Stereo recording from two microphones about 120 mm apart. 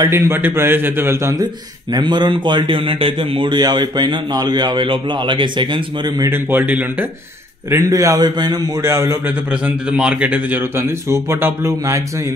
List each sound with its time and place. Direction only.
0.1 s speech: 20° right (ahead or behind)
2.0 s a man's voice: 40° right (ahead or behind)
6.3 s a man's voice: 15° right (ahead or behind)
7.7 s speech: 25° right (ahead or behind)
8.8 s speech: 20° right (ahead or behind)
9.5 s speech: 10° right (ahead or behind)